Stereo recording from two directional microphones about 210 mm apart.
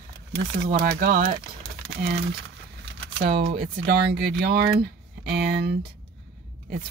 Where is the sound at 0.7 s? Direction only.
45° right (ahead or behind).